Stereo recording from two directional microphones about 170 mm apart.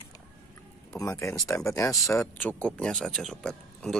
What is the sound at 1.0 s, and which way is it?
Speech, 20° left (ahead or behind).